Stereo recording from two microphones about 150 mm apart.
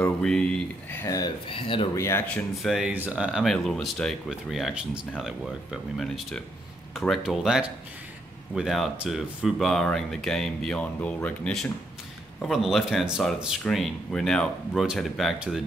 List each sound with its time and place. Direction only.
0.0 s speech: 5° left (ahead or behind)
1.0 s speech: 25° left (ahead or behind)
1.5 s speech: 35° left (ahead or behind)
2.0 s speech: 15° left (ahead or behind)
2.5 s speech: centre (ahead or behind)